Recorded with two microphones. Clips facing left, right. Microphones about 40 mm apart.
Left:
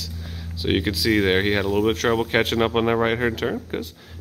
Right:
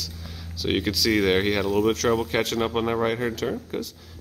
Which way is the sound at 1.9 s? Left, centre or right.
Left.